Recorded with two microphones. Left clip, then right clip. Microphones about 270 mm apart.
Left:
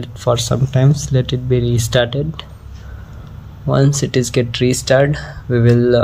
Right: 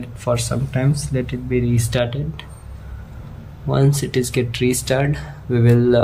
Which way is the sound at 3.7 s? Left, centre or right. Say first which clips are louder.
Left 4 dB; centre.